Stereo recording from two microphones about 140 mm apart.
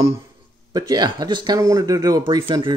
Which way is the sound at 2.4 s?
35° right (ahead or behind).